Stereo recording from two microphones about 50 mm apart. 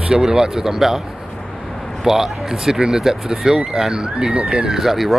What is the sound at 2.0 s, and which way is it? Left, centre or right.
Speech, centre.